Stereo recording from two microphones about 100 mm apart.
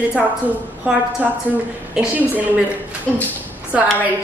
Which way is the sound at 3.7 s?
10° right (ahead or behind).